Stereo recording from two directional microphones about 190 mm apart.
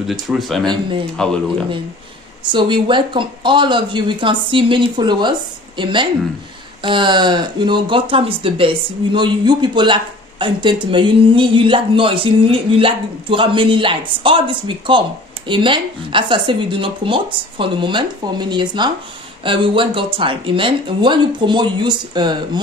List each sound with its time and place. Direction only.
0.0 s speech: centre (ahead or behind)
0.7 s speech: 25° right (ahead or behind)
1.1 s speech: 5° left (ahead or behind)
2.4 s speech: 25° right (ahead or behind)